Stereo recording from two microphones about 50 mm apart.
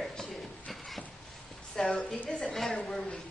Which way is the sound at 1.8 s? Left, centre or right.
Centre.